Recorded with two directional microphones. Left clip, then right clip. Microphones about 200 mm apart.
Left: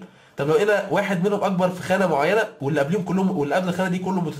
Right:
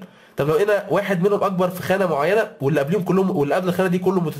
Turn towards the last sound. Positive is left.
turn(degrees=-30)  # may be behind; listen again after turning